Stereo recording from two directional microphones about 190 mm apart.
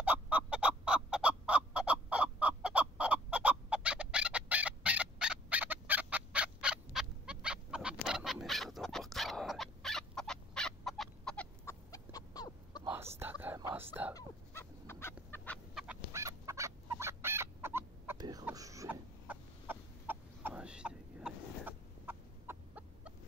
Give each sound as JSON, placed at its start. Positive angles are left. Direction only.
{"t": 0.0, "sound": "chicken", "side_deg": -10}
{"t": 11.9, "sound": "a sound", "side_deg": 20}
{"t": 13.2, "sound": "whispering", "side_deg": -10}
{"t": 14.1, "sound": "fowl", "side_deg": 15}
{"t": 15.9, "sound": "fowl", "side_deg": -15}
{"t": 18.4, "sound": "chicken", "side_deg": -15}